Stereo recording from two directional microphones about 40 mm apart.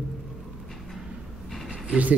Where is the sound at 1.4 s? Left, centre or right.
Centre.